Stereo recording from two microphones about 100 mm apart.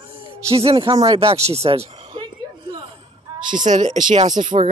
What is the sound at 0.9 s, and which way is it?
Speech, 40° right (ahead or behind).